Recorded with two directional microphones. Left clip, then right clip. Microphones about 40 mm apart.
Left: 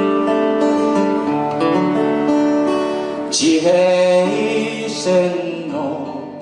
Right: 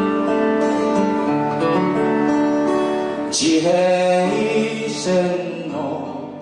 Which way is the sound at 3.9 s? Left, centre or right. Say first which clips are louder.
Left 3 dB; left.